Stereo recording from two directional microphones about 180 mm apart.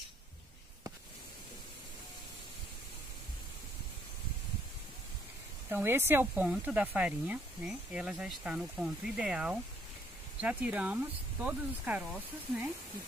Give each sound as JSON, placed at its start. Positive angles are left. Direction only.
{"t": 5.7, "sound": "speech", "side_deg": -10}